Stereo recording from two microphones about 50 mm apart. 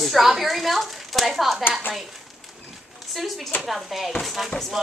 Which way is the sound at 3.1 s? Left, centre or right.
Centre.